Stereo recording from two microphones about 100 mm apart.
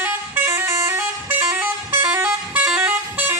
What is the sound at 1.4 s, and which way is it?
Vehicle, 20° right (ahead or behind).